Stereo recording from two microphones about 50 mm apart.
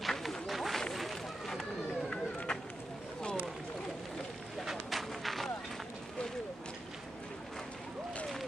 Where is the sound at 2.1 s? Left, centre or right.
Centre.